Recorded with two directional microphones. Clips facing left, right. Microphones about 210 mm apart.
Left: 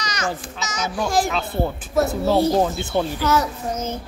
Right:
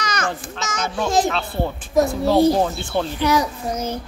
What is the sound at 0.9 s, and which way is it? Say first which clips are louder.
A child's voice: right 2 dB; 25° right (ahead or behind).